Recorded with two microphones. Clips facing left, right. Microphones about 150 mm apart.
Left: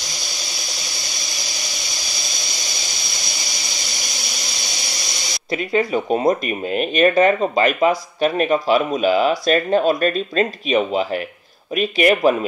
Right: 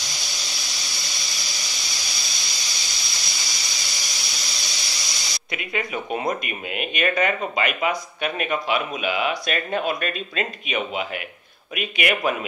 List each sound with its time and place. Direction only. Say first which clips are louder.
5.7 s speech: left 9 dB; 35° left (ahead or behind)